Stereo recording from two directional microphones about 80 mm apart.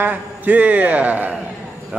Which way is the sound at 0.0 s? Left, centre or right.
Centre.